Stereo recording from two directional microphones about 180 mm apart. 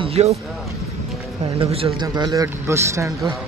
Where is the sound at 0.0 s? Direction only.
35° right (ahead or behind).